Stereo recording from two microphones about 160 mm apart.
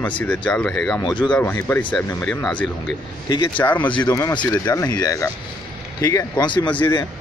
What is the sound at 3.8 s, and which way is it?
Speech, 30° left (ahead or behind).